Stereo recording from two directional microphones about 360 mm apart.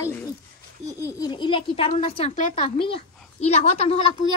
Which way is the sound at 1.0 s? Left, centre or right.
Centre.